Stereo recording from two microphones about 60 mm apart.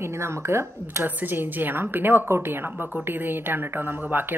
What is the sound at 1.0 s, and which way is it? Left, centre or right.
A woman's voice, right.